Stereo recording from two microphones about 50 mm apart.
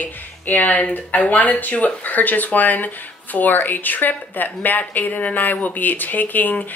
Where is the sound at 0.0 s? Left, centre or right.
Left.